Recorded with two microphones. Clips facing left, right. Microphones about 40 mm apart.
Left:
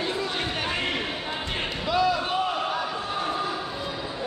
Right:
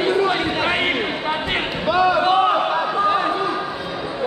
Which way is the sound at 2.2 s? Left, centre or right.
Right.